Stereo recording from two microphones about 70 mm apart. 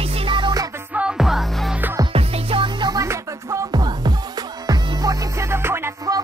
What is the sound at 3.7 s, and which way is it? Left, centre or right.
Music, right.